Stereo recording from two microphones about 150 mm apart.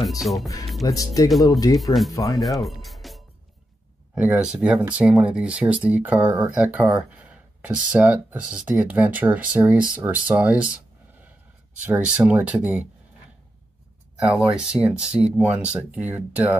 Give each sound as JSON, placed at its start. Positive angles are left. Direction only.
{"t": 0.2, "sound": "speech", "side_deg": 0}
{"t": 0.8, "sound": "speech", "side_deg": 25}
{"t": 2.4, "sound": "music", "side_deg": 0}
{"t": 4.1, "sound": "speech", "side_deg": -5}
{"t": 11.8, "sound": "speech", "side_deg": -10}
{"t": 14.1, "sound": "speech", "side_deg": -10}